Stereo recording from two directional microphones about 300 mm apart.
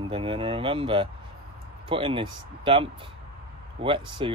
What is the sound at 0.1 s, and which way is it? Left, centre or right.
Speech, centre.